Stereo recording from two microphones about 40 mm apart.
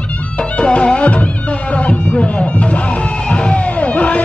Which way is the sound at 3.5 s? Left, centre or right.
Left.